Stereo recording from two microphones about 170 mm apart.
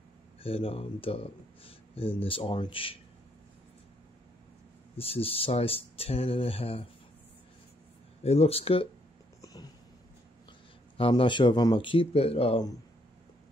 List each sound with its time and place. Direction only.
0.4 s speech: 35° left (ahead or behind)
4.9 s speech: 35° left (ahead or behind)
8.2 s speech: 35° left (ahead or behind)
9.4 s a sound: 20° left (ahead or behind)
11.0 s speech: 30° left (ahead or behind)